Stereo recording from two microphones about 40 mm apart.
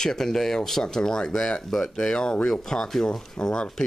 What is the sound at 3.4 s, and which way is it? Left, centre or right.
Speech, left.